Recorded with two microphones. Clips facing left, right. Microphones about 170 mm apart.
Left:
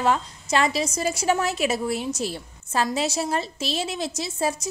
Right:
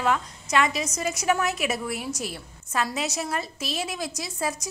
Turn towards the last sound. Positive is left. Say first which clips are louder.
# left 4 dB
turn(degrees=30)  # may be behind; listen again after turning